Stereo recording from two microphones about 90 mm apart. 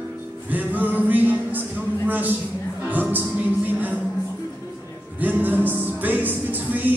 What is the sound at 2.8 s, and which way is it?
Music, 20° right (ahead or behind).